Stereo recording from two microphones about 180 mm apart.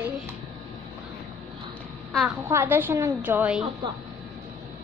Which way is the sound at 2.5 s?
10° right (ahead or behind).